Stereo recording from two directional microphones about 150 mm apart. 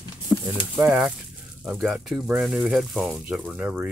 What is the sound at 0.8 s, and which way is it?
Speech, 15° right (ahead or behind).